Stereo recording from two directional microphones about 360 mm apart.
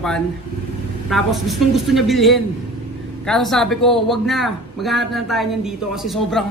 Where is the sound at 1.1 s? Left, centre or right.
Centre.